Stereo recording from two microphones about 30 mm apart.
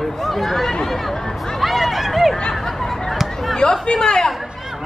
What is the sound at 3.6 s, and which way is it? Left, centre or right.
Speech, left.